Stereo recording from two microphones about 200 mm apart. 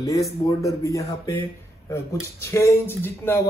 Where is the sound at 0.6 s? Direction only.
15° left (ahead or behind).